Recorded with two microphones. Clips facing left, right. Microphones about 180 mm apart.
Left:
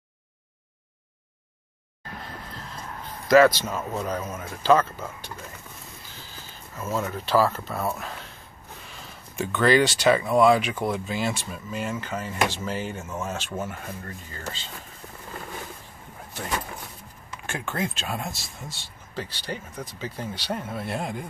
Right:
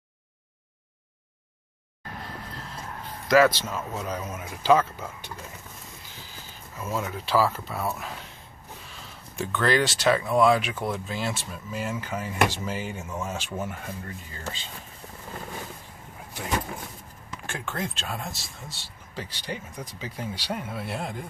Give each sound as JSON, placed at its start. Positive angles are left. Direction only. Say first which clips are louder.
{"t": 3.3, "sound": "speech", "louder": "left 3 dB", "side_deg": -5}
{"t": 7.0, "sound": "speech", "louder": "left 2 dB", "side_deg": -5}
{"t": 9.4, "sound": "speech", "louder": "left 4 dB", "side_deg": 0}
{"t": 13.0, "sound": "speech", "louder": "left 1 dB", "side_deg": 5}
{"t": 13.3, "sound": "speech", "louder": "left 1 dB", "side_deg": -10}
{"t": 17.5, "sound": "speech", "louder": "left 3 dB", "side_deg": 0}
{"t": 19.1, "sound": "speech", "louder": "left 2 dB", "side_deg": -15}